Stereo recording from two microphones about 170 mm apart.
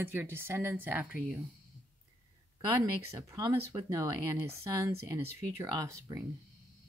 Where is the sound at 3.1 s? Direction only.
15° right (ahead or behind).